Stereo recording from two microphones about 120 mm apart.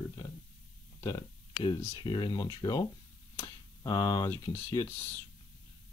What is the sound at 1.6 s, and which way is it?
Speech, 40° left (ahead or behind).